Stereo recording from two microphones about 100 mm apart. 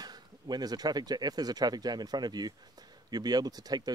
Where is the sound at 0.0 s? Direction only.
45° right (ahead or behind).